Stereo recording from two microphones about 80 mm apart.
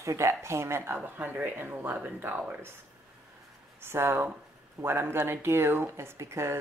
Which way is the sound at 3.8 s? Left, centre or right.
Right.